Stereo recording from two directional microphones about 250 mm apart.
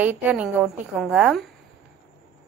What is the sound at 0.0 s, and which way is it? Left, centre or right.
A woman's voice, centre.